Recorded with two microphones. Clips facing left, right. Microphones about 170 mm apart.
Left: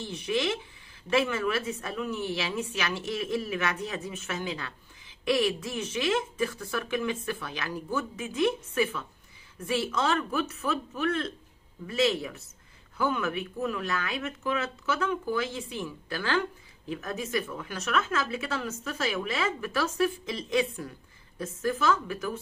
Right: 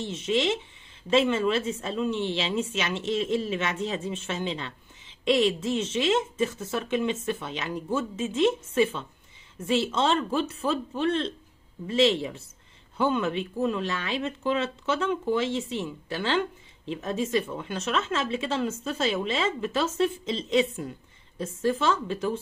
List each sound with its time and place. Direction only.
0.0 s speech: 20° right (ahead or behind)